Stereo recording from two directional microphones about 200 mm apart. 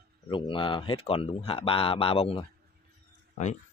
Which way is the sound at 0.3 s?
25° left (ahead or behind).